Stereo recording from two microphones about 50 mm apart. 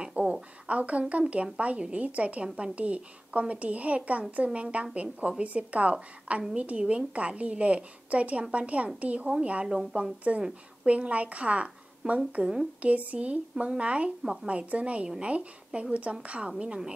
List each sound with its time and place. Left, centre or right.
0.3 s a sound: right
1.3 s a woman's voice: right
9.7 s a woman's voice: centre
10.9 s a woman's voice: right
14.2 s a woman's voice: centre
14.5 s a woman's voice: right